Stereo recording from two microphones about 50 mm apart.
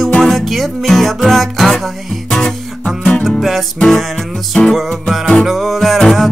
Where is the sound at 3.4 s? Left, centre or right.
Centre.